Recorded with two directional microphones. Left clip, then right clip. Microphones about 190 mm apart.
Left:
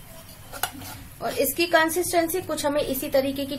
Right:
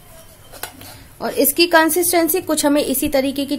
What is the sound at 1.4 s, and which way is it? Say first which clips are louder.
A woman's voice: right 7 dB; 55° right (ahead or behind).